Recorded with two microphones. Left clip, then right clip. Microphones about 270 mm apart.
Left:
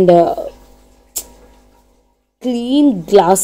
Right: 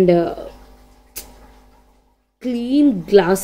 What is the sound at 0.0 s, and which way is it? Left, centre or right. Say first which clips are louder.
Speech: left 6 dB; centre.